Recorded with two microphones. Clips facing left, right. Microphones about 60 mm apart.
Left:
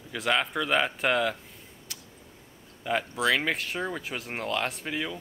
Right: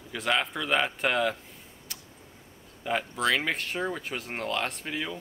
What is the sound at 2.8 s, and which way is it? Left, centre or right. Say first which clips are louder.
Speech: left 1 dB; centre.